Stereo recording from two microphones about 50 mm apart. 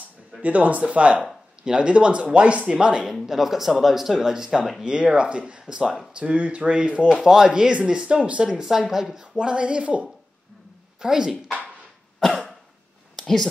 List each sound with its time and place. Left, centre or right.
0.4 s speech: right
3.1 s speech: centre; by 7.1 s right
7.1 s speech: centre
9.4 s speech: right
11.0 s speech: centre
13.1 s a sound: centre